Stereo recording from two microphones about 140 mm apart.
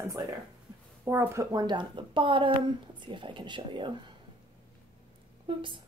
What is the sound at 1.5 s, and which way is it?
Speech, 30° right (ahead or behind).